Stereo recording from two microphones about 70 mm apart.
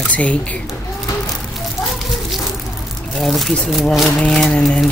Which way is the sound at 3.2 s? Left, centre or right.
Centre.